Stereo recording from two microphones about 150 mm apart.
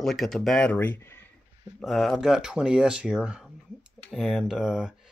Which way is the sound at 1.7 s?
Centre (ahead or behind).